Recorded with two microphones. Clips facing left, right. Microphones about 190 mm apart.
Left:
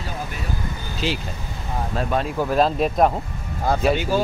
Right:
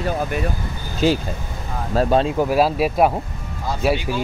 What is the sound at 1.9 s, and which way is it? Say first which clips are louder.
Speech: right 7 dB; 35° right (ahead or behind).